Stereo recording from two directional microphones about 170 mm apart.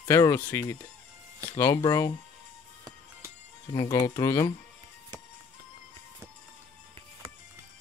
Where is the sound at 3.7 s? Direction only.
25° left (ahead or behind).